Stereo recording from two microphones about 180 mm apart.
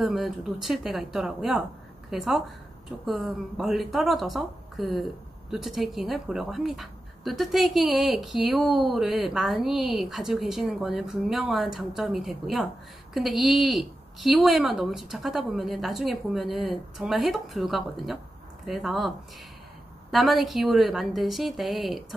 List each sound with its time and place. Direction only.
0.0 s a woman's voice: centre (ahead or behind)